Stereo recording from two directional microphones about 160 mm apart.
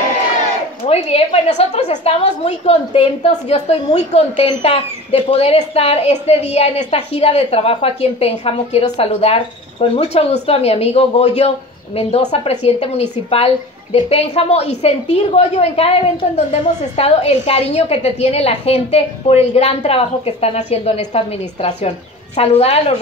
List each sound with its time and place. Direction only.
0.8 s a woman's voice: 40° left (ahead or behind)